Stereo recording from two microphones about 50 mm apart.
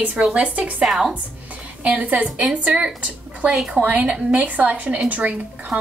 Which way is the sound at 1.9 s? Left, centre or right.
Right.